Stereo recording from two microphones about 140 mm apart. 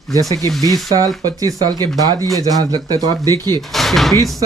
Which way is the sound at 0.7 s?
25° right (ahead or behind).